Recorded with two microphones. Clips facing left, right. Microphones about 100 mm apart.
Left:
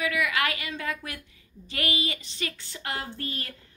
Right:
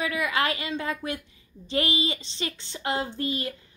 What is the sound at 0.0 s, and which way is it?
A woman's voice, 30° right (ahead or behind).